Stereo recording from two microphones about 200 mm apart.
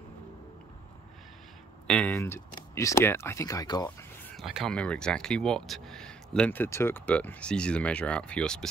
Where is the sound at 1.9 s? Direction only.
5° left (ahead or behind).